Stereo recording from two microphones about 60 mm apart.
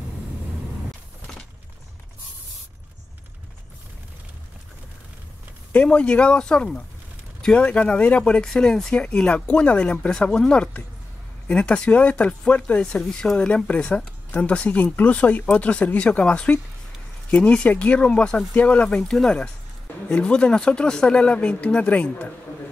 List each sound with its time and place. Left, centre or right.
5.7 s speech: left
8.5 s speech: centre